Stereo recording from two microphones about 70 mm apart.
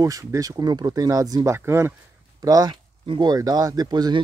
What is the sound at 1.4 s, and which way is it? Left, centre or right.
Speech, right.